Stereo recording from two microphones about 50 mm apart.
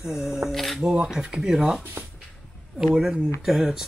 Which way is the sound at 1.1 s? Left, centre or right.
Centre.